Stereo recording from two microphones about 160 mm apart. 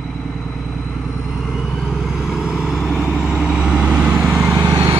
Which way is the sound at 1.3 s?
Centre (ahead or behind).